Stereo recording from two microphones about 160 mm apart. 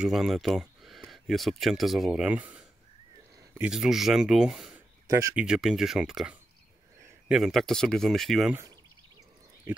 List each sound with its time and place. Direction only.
0.0 s speech: centre (ahead or behind)
5.0 s a sound: 20° right (ahead or behind)
5.3 s speech: 5° right (ahead or behind)